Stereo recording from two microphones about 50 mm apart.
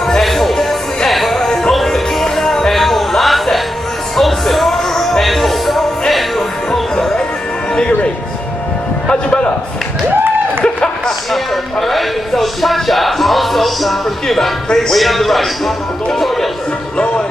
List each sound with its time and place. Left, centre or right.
0.2 s music: centre
7.7 s music: centre
10.6 s a sound: centre
11.9 s music: centre
15.0 s a man's voice: centre